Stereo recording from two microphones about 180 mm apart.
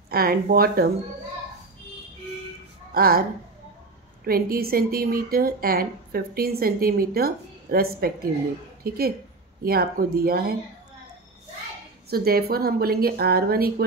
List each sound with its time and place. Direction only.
0.1 s a woman's voice: 55° right (ahead or behind)
2.9 s a woman's voice: 55° right (ahead or behind)
12.1 s a woman's voice: 60° right (ahead or behind)